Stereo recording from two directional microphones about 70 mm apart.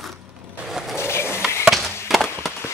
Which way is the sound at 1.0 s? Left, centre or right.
Left.